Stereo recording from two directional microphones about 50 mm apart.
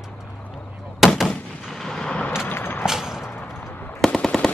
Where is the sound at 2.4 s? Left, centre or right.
Left.